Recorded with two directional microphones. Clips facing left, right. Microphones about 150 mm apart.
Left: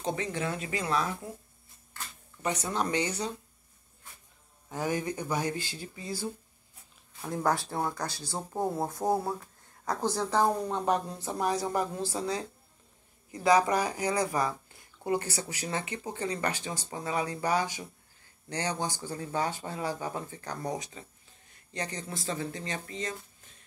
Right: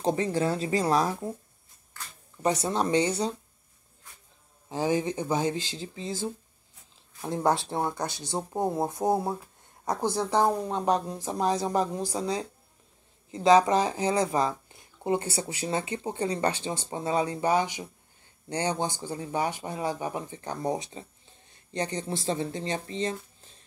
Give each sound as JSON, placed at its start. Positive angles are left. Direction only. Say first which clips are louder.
{"t": 0.0, "sound": "speech", "louder": "right 6 dB", "side_deg": -35}
{"t": 2.4, "sound": "speech", "louder": "right 5 dB", "side_deg": -30}
{"t": 4.6, "sound": "speech", "louder": "right 5 dB", "side_deg": -25}